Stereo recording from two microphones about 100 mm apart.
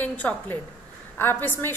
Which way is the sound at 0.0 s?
15° left (ahead or behind).